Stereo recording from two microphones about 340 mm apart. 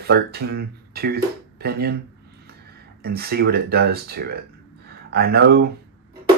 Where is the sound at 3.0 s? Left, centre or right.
Right.